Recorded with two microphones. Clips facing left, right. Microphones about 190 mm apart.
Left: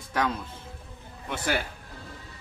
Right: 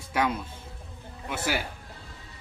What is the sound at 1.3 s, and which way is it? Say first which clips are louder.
Speech: left 1 dB; 5° right (ahead or behind).